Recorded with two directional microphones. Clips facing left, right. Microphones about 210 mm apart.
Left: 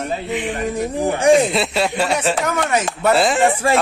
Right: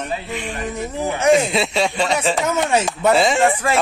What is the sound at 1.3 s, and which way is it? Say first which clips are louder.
Speech: left 1 dB; centre (ahead or behind).